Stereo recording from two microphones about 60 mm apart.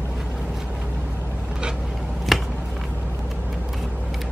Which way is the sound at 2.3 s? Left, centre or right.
Centre.